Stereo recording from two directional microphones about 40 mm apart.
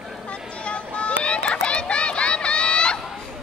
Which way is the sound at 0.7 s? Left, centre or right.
Left.